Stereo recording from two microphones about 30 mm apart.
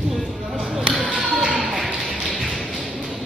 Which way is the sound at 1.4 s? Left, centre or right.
Right.